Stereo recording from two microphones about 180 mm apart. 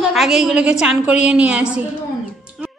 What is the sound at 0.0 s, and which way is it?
A man's voice, centre (ahead or behind).